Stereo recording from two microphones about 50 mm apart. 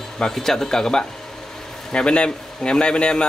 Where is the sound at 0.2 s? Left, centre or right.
Centre.